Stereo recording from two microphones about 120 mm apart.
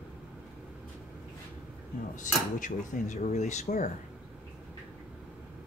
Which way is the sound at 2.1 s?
90° left.